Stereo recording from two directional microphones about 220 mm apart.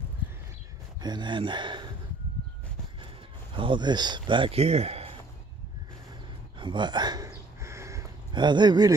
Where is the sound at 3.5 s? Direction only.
20° right (ahead or behind).